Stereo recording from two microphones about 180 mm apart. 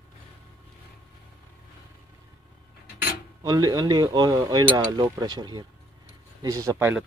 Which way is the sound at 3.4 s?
25° right (ahead or behind).